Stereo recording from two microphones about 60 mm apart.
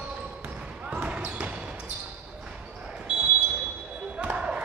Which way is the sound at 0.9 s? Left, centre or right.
Right.